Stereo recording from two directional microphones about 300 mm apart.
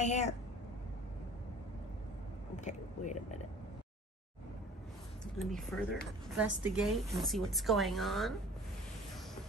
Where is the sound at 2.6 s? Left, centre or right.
Left.